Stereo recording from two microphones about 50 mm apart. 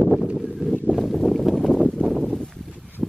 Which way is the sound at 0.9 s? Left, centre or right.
Centre.